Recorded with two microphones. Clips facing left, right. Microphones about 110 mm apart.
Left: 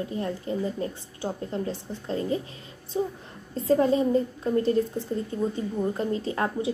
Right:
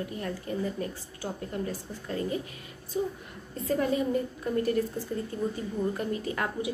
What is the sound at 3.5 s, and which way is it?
A woman's voice, 30° left (ahead or behind).